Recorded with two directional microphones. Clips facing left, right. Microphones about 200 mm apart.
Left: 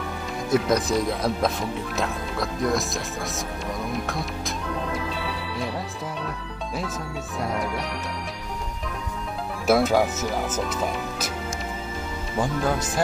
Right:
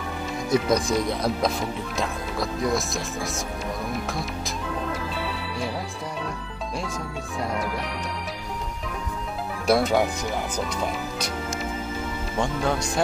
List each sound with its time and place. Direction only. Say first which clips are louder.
0.5 s speech: even; centre (ahead or behind)
7.3 s speech: left 1 dB; centre (ahead or behind)
9.7 s speech: left 1 dB; centre (ahead or behind)
12.4 s speech: left 1 dB; 5° left (ahead or behind)